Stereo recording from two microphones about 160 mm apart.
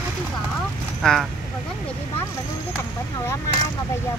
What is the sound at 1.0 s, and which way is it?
Speech, 5° left (ahead or behind).